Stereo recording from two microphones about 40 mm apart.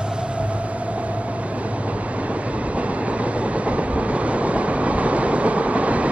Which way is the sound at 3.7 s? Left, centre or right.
Right.